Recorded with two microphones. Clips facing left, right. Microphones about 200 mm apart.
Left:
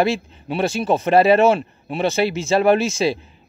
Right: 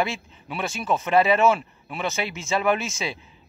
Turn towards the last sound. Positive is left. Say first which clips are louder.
# left 8 dB
turn(degrees=35)  # may be behind; listen again after turning